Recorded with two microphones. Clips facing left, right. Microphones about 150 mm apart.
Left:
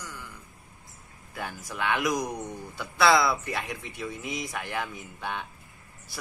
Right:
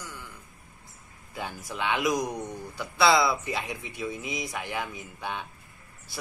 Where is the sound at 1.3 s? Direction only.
20° right (ahead or behind).